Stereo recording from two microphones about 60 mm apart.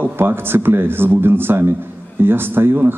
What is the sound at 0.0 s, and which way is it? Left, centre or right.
Speech, right.